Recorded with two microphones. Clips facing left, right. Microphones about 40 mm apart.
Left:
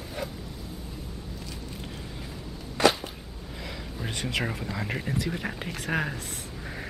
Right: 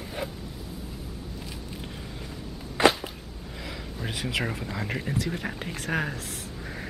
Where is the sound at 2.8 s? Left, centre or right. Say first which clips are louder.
Right 1 dB; right.